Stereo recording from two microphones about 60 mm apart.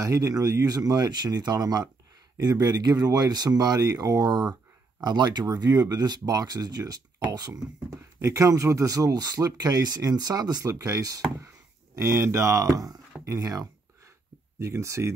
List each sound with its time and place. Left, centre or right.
0.0 s speech: right
5.6 s speech: right
11.9 s speech: right
13.2 s a sound: right
14.6 s speech: right